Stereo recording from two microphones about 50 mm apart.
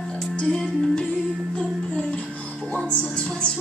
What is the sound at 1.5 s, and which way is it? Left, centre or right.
Music, left.